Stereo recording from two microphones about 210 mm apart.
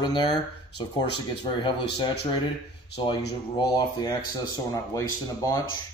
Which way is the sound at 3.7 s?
20° left (ahead or behind).